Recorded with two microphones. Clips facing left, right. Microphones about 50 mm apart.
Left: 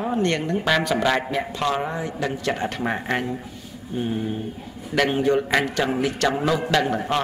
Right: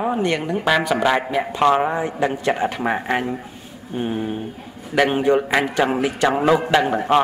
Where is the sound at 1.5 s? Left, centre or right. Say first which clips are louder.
Right 10 dB; right.